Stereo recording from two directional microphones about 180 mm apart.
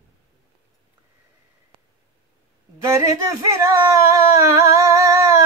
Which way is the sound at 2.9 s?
15° right (ahead or behind).